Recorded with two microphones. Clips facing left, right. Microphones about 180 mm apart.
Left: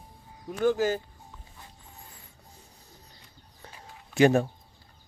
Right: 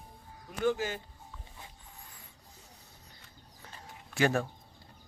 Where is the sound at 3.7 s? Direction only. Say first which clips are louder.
Left 8 dB; 20° left (ahead or behind).